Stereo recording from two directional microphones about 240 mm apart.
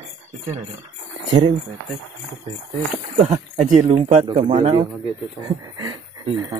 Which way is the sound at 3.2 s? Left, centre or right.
Right.